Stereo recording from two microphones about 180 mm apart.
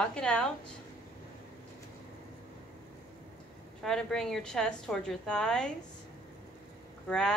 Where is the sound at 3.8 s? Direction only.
5° left (ahead or behind).